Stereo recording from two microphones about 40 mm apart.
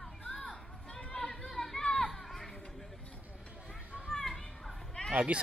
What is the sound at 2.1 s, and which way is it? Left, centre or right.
Children playing, centre.